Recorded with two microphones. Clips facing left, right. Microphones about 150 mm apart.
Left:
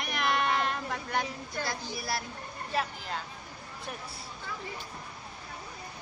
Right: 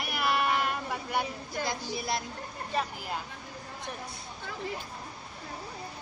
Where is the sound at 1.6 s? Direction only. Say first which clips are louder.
Right 3 dB; 20° right (ahead or behind).